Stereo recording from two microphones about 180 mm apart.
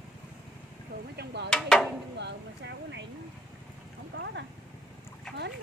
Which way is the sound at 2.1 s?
75° right (ahead or behind).